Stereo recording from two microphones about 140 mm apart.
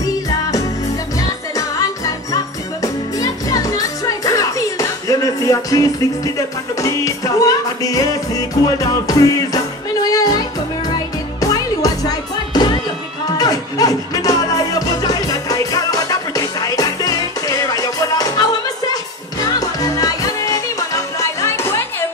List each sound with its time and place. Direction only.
2.3 s music: 25° left (ahead or behind)
19.6 s music: 25° left (ahead or behind)